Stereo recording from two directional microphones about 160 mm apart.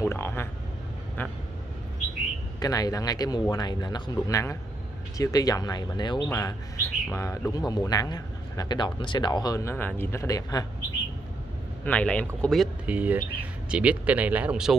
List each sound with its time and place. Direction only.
0.0 s vehicle: 15° left (ahead or behind)
2.6 s speech: 20° left (ahead or behind)
11.8 s speech: 10° left (ahead or behind)
12.8 s speech: 10° right (ahead or behind)